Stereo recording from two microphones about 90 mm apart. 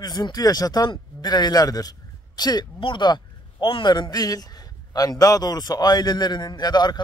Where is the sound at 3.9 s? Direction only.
50° left (ahead or behind).